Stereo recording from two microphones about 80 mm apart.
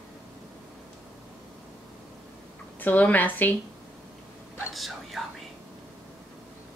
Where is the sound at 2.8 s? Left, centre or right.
Left.